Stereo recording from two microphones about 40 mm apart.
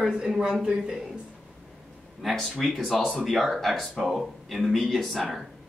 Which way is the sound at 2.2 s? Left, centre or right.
Centre.